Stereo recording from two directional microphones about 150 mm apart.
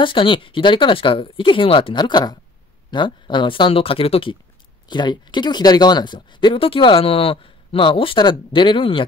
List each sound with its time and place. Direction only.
0.0 s speech: 35° left (ahead or behind)